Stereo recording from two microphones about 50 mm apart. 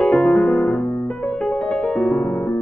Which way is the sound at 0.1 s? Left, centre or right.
Left.